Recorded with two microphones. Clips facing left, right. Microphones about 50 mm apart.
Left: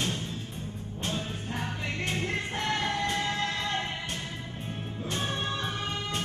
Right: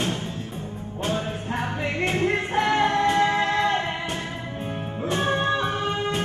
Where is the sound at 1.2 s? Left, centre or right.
Right.